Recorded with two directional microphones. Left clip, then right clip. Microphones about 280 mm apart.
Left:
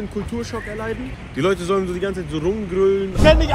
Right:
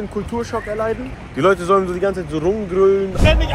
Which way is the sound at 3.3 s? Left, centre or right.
Left.